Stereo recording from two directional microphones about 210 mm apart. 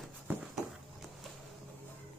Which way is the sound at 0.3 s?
10° right (ahead or behind).